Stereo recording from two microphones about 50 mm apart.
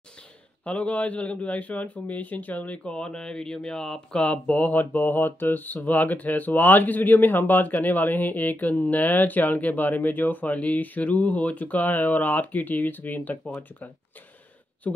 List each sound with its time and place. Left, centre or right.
0.7 s a man's voice: left
2.8 s speech: centre
4.2 s speech: left